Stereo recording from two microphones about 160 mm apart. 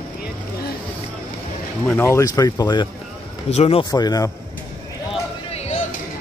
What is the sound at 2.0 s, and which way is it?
Speech, 20° left (ahead or behind).